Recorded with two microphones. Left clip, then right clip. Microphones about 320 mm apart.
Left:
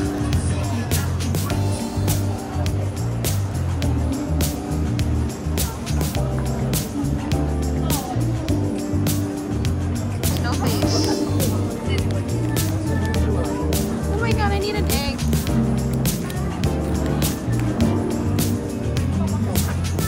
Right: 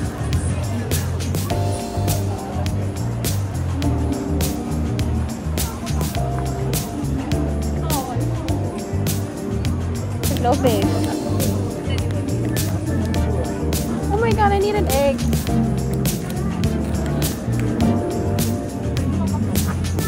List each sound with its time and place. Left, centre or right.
10.2 s music: centre
14.2 s music: centre